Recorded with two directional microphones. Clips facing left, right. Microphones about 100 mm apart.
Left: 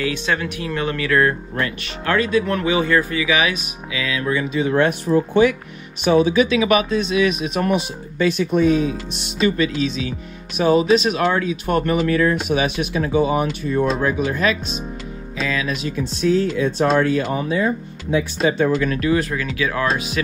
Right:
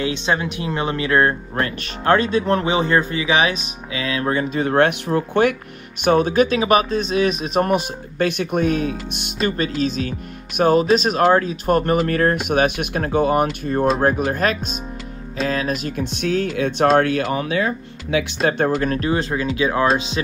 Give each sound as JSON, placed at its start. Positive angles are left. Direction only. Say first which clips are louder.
{"t": 0.0, "sound": "speech", "louder": "right 1 dB", "side_deg": -25}
{"t": 18.4, "sound": "speech", "louder": "left 1 dB", "side_deg": -55}